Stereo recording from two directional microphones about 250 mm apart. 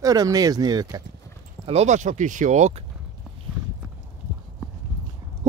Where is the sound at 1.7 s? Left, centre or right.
Right.